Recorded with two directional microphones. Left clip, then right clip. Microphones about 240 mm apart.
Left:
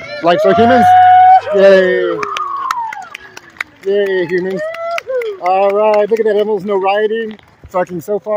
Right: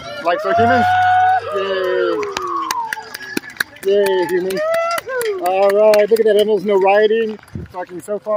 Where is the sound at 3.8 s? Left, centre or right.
Centre.